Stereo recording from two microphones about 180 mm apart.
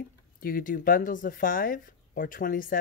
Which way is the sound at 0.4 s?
50° left (ahead or behind).